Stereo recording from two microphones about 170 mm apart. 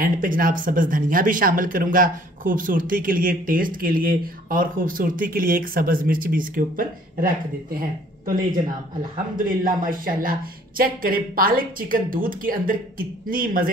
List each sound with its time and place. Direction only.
0.0 s speech: 55° right (ahead or behind)
9.1 s a man's voice: 55° right (ahead or behind)